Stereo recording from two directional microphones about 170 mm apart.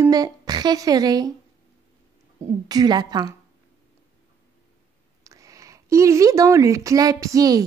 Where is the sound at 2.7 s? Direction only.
25° right (ahead or behind).